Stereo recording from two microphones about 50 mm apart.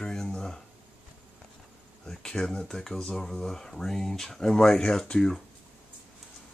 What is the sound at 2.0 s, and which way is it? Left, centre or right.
Speech, centre.